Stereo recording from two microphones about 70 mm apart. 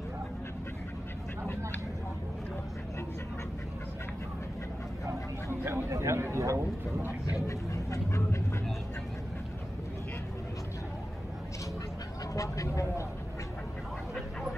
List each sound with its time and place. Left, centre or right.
5.5 s speech: right
7.2 s speech: left
12.4 s a sound: left